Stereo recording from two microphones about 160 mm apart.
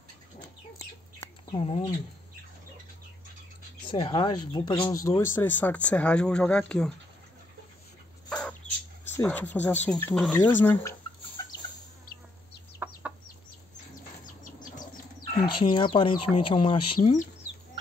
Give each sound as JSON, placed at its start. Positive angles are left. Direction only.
{"t": 1.5, "sound": "speech", "side_deg": 40}
{"t": 3.9, "sound": "speech", "side_deg": 35}
{"t": 8.3, "sound": "bird", "side_deg": 5}
{"t": 9.1, "sound": "speech", "side_deg": 10}
{"t": 12.7, "sound": "chicken", "side_deg": -10}
{"t": 14.4, "sound": "bird", "side_deg": 55}
{"t": 15.6, "sound": "speech", "side_deg": 30}